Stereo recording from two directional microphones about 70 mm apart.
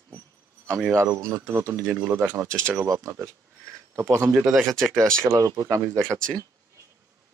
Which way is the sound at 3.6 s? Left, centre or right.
Right.